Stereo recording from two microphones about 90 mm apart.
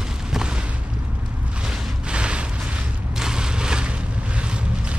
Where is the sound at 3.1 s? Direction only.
5° right (ahead or behind).